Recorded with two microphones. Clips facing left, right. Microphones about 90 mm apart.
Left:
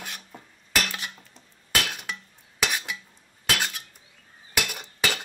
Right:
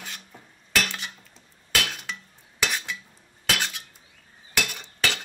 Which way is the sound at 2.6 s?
5° left (ahead or behind).